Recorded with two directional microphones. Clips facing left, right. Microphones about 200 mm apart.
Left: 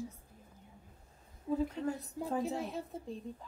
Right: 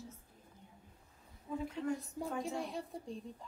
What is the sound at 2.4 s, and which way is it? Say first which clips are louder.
Speech: left 3 dB; centre (ahead or behind).